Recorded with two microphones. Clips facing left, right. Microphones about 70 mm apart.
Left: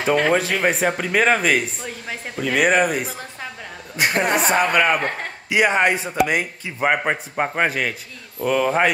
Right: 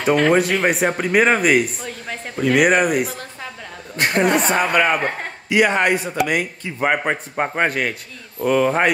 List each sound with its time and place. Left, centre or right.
0.0 s a woman's voice: centre
5.5 s a man's voice: centre
6.8 s speech: centre